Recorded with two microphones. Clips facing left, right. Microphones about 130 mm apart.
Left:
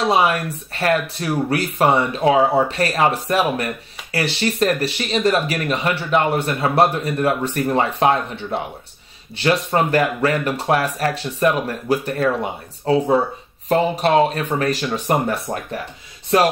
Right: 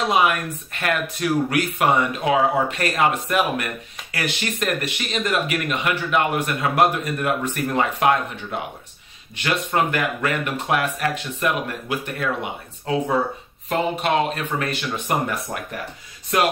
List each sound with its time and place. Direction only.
0.1 s speech: 30° left (ahead or behind)